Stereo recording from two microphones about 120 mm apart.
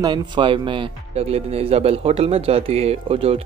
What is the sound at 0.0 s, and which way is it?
Speech, 40° right (ahead or behind).